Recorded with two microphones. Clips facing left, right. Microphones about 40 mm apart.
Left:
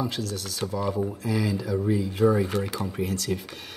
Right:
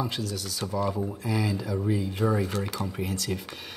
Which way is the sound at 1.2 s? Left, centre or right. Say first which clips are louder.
Even; centre.